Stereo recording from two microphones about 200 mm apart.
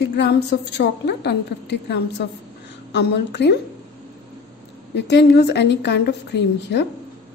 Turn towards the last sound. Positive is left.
turn(degrees=60)  # may be behind; listen again after turning